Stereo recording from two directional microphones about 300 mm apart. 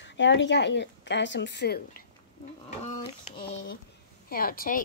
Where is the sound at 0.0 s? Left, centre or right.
Left.